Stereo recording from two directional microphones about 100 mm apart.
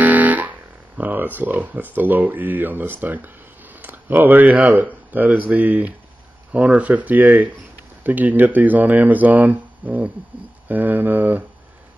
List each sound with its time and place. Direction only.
0.0 s speech: 15° right (ahead or behind)